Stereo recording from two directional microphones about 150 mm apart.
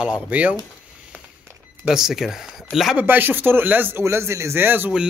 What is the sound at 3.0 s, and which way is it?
Speech, 15° right (ahead or behind).